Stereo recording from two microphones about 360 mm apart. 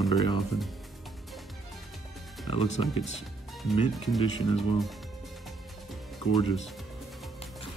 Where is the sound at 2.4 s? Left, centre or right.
Centre.